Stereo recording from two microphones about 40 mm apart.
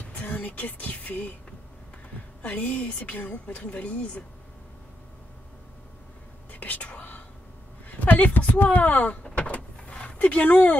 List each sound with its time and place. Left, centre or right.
0.1 s music: left
2.4 s a woman's voice: left
6.5 s whispering: left
7.9 s speech: left
9.2 s power windows: left
10.2 s a woman's voice: left